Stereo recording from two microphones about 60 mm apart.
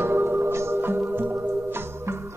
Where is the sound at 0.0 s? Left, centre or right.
Right.